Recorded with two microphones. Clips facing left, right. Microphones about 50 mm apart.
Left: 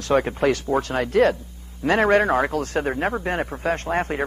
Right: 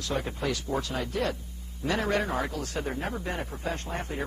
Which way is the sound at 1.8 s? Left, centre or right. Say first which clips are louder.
Left 10 dB; left.